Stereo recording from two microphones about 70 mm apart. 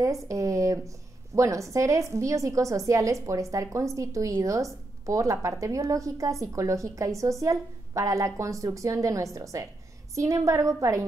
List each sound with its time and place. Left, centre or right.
0.0 s a woman's voice: right